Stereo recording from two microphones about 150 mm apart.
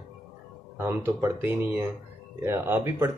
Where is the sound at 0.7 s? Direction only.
15° right (ahead or behind).